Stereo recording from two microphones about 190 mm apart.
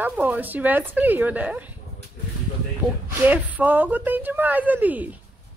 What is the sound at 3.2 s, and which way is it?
A woman's voice, 10° right (ahead or behind).